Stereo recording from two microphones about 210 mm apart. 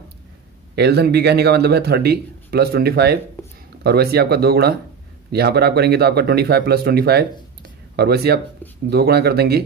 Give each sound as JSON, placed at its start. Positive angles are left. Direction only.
{"t": 0.7, "sound": "speech", "side_deg": -50}
{"t": 3.4, "sound": "a sound", "side_deg": 10}
{"t": 3.8, "sound": "speech", "side_deg": -50}